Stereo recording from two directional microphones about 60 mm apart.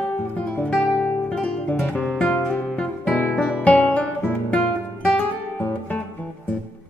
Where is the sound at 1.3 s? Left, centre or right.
Centre.